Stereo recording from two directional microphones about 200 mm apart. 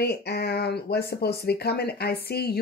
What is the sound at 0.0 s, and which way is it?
Speech, 55° left (ahead or behind).